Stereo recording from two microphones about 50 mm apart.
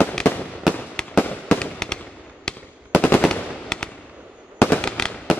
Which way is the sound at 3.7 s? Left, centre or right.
Centre.